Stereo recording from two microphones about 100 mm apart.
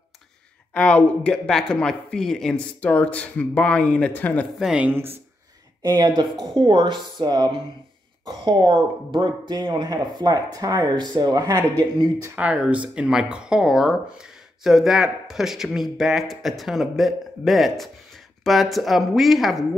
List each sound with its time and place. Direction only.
0.7 s speech: 10° left (ahead or behind)
4.6 s speech: 5° right (ahead or behind)
5.8 s speech: 40° right (ahead or behind)
12.4 s speech: 15° right (ahead or behind)